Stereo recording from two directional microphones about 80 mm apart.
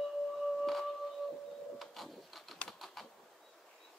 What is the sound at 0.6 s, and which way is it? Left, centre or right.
Music, centre.